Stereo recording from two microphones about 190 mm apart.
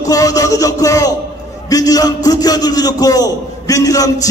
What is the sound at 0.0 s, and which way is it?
Music, 20° left (ahead or behind).